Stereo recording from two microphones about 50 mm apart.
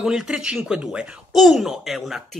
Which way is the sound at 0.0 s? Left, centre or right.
Centre.